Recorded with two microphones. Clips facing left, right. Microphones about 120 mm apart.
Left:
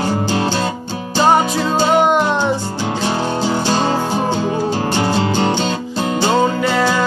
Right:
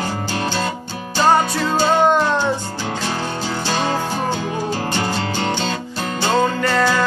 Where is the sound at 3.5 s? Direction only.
30° left (ahead or behind).